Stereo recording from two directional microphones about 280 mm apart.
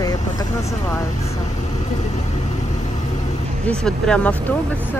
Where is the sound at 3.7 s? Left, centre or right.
Centre.